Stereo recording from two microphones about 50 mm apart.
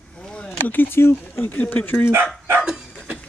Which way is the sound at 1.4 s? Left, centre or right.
Left.